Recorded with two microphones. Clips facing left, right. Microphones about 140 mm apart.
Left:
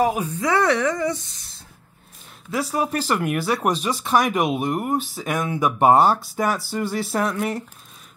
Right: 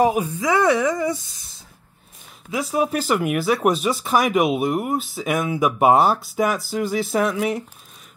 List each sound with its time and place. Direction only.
0.0 s speech: 15° right (ahead or behind)
2.5 s speech: 5° right (ahead or behind)